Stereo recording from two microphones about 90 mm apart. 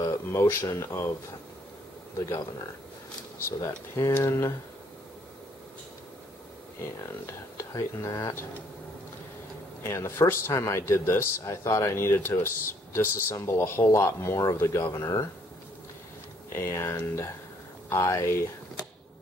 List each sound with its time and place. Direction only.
0.0 s speech: 30° left (ahead or behind)
2.1 s speech: 35° left (ahead or behind)
3.4 s speech: 30° left (ahead or behind)
7.2 s speech: 35° left (ahead or behind)
9.8 s a man's voice: 30° left (ahead or behind)
16.5 s speech: 30° left (ahead or behind)